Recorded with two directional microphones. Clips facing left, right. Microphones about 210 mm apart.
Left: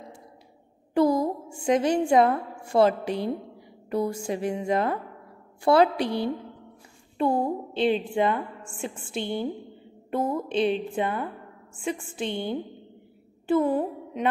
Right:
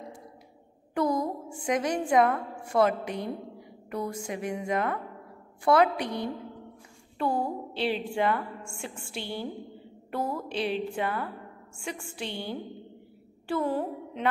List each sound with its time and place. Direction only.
0.9 s a woman's voice: 30° left (ahead or behind)